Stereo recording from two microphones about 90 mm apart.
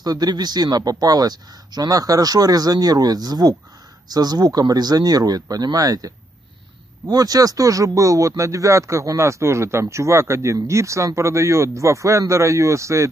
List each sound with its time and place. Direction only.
0.0 s speech: 50° right (ahead or behind)